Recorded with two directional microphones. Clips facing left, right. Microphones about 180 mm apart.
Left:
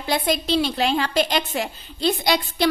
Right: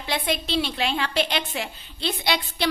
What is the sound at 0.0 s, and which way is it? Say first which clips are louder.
A woman's voice: left 4 dB; 40° left (ahead or behind).